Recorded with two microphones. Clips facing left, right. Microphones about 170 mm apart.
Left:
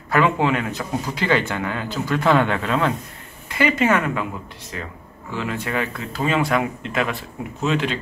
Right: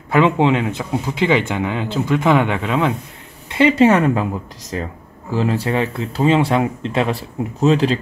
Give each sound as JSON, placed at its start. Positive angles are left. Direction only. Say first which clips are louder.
{"t": 0.1, "sound": "a man's voice", "louder": "right 4 dB", "side_deg": -20}
{"t": 3.4, "sound": "a man's voice", "louder": "right 6 dB", "side_deg": -25}